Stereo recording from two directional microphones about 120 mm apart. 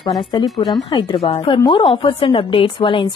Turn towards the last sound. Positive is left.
turn(degrees=45)  # may be behind; listen again after turning